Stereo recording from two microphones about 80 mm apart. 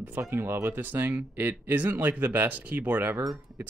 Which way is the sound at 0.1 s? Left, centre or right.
Right.